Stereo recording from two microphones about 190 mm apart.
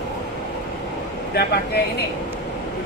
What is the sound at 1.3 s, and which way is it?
Speech, 60° left (ahead or behind).